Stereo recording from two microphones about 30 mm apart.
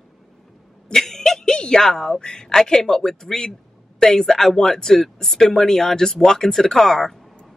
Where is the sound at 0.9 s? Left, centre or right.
Centre.